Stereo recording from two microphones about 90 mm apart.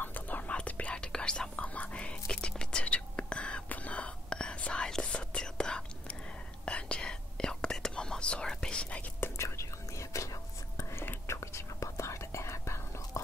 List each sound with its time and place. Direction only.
0.0 s whispering: 20° left (ahead or behind)
9.2 s whispering: 30° left (ahead or behind)